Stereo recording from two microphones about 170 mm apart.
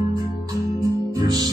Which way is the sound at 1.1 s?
25° right (ahead or behind).